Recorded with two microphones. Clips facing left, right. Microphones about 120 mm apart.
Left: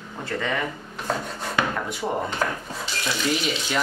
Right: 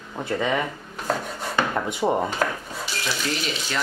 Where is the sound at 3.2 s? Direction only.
5° left (ahead or behind).